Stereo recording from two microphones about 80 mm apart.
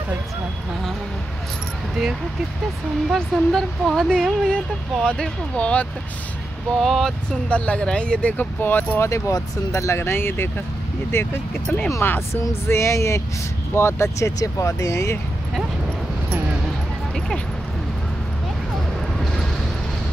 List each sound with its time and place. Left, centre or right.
3.2 s speech: centre
6.8 s speech: centre
7.4 s speech: centre
9.1 s speech: left
12.6 s speech: left